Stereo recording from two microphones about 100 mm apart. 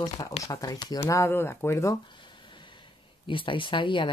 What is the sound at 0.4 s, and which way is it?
Speech, 35° left (ahead or behind).